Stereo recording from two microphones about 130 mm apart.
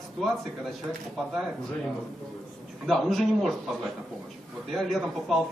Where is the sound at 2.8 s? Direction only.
Centre (ahead or behind).